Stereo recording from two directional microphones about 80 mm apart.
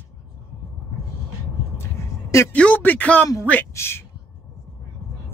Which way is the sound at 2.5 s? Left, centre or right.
Centre.